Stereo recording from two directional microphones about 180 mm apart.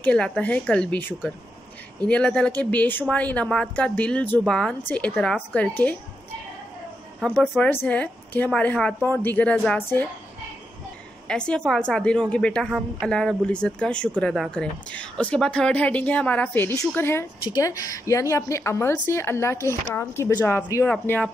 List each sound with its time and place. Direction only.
0.0 s speech: 5° left (ahead or behind)
7.2 s speech: 5° left (ahead or behind)
11.2 s a woman's voice: 5° left (ahead or behind)
20.9 s speech: 5° left (ahead or behind)